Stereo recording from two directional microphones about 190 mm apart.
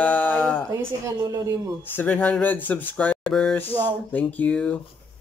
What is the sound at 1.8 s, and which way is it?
A man's voice, 10° left (ahead or behind).